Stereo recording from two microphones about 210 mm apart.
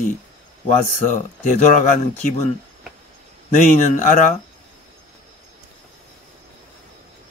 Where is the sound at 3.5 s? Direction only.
35° left (ahead or behind).